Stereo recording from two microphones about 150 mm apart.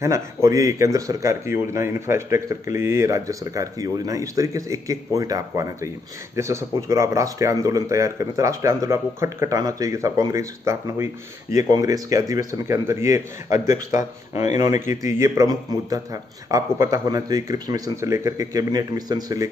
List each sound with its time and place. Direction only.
0.0 s a man's voice: 20° right (ahead or behind)
15.0 s a man's voice: 20° right (ahead or behind)